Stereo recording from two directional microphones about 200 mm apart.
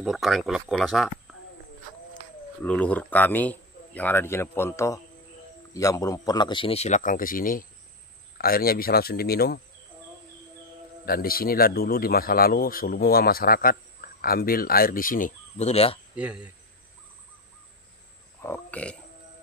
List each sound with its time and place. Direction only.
0.0 s speech: centre (ahead or behind)
2.6 s a man's voice: 5° left (ahead or behind); by 9.6 s 50° left (ahead or behind)
11.1 s a man's voice: 45° left (ahead or behind); by 16.0 s 30° left (ahead or behind)
16.2 s cricket: 5° right (ahead or behind)
18.4 s burping: 10° left (ahead or behind)